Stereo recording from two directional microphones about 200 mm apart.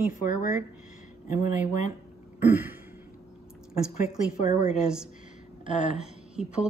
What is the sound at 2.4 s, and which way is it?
Throat clearing, 10° right (ahead or behind).